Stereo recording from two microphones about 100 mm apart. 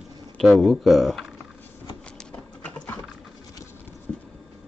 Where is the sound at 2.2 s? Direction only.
10° left (ahead or behind).